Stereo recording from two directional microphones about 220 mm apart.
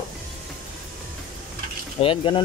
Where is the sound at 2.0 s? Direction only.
25° left (ahead or behind).